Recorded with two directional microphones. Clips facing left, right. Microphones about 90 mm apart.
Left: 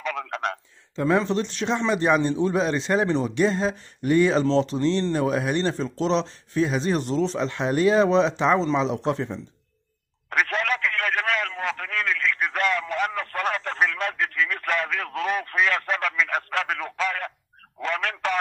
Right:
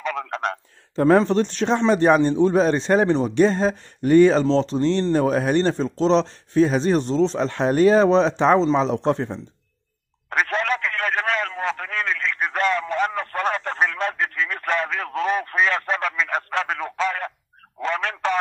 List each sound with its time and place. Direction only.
0.0 s a man's voice: 35° right (ahead or behind)
10.3 s a sound: 30° right (ahead or behind)
17.7 s telephone: 30° right (ahead or behind)